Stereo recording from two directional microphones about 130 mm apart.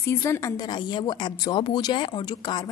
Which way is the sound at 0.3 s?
25° left (ahead or behind).